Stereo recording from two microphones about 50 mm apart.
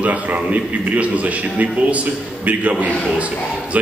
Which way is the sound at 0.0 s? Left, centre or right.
Right.